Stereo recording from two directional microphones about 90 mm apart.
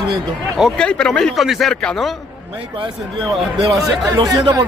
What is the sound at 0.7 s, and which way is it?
Speech, 10° left (ahead or behind).